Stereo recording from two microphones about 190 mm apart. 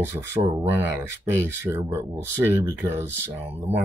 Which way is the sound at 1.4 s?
15° right (ahead or behind).